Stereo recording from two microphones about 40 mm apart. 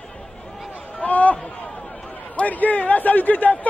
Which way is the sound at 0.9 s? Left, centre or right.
Left.